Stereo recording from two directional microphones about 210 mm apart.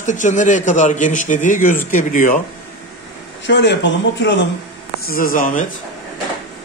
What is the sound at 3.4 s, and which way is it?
Speech, 55° left (ahead or behind).